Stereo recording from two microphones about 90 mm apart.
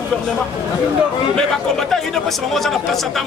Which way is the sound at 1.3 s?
5° left (ahead or behind).